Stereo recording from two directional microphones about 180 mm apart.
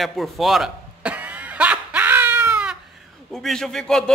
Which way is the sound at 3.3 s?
Centre (ahead or behind).